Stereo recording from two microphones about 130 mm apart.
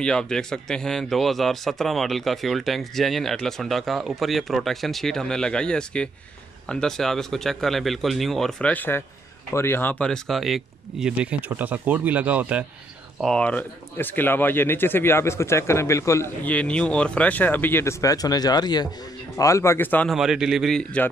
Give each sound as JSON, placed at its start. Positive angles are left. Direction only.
{"t": 0.0, "sound": "a man's voice", "side_deg": 5}
{"t": 13.2, "sound": "speech", "side_deg": 5}
{"t": 16.4, "sound": "speech", "side_deg": 10}
{"t": 20.1, "sound": "a man's voice", "side_deg": -5}